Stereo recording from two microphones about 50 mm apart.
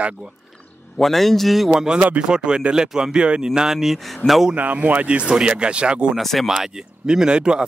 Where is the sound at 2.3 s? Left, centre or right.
Centre.